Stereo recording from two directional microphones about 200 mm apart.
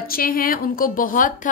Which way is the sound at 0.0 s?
45° left (ahead or behind).